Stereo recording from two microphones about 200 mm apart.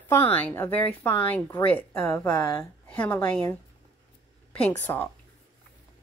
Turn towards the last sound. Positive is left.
turn(degrees=10)  # may be behind; listen again after turning